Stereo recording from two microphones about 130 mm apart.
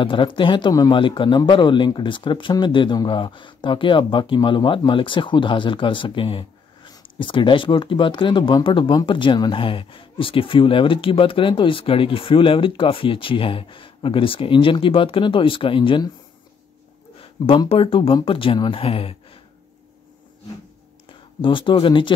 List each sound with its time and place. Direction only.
0.0 s speech: 40° left (ahead or behind)
17.6 s speech: 45° left (ahead or behind)
21.4 s speech: 40° left (ahead or behind)